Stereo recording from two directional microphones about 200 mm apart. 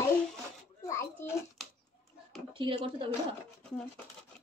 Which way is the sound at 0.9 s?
10° left (ahead or behind).